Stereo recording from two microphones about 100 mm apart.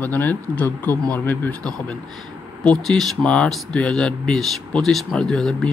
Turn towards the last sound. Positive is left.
turn(degrees=5)  # may be behind; listen again after turning